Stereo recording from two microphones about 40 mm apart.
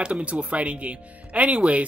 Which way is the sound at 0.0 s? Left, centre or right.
Right.